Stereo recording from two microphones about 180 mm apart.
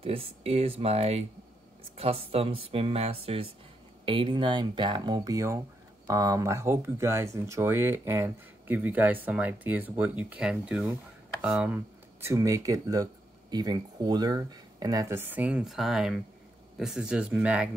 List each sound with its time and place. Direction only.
0.0 s speech: 35° right (ahead or behind); by 17.6 s 5° right (ahead or behind)